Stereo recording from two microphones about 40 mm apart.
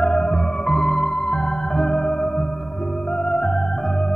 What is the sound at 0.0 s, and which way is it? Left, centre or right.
Organ, centre.